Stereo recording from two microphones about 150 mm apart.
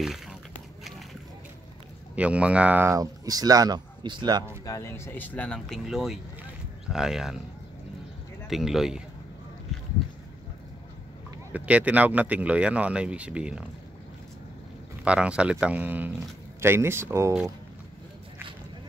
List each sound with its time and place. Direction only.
0.0 s a sound: centre (ahead or behind)
2.1 s speech: 10° right (ahead or behind); by 4.5 s 30° right (ahead or behind)
4.6 s a man's voice: 20° left (ahead or behind); by 7.3 s 5° right (ahead or behind)
8.5 s a man's voice: centre (ahead or behind)
11.5 s speech: 10° right (ahead or behind)
15.0 s speech: 5° right (ahead or behind)